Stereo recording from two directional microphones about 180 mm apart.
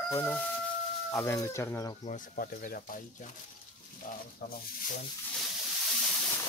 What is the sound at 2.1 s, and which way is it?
Speech, 50° left (ahead or behind).